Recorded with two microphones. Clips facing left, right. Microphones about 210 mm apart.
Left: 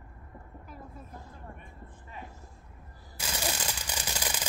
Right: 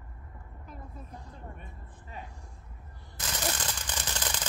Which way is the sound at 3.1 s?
10° left (ahead or behind).